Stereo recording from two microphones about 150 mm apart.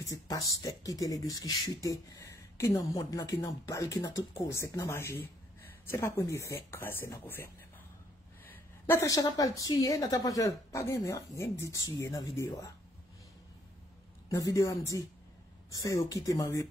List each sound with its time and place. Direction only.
0.0 s speech: 25° left (ahead or behind)
14.3 s speech: 20° left (ahead or behind)